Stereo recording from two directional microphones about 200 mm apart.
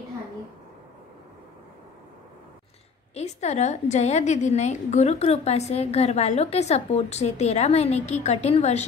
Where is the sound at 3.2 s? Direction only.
35° left (ahead or behind).